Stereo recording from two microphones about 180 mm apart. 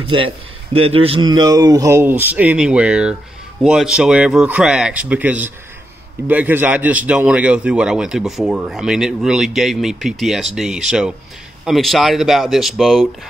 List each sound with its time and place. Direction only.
0.0 s a man's voice: 30° right (ahead or behind); by 13.1 s centre (ahead or behind)